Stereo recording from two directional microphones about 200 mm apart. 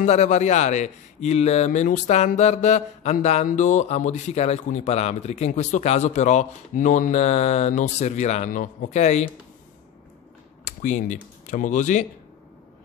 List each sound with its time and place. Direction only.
0.0 s speech: 35° left (ahead or behind)
10.6 s computer keyboard: 40° left (ahead or behind)
11.4 s speech: 40° left (ahead or behind)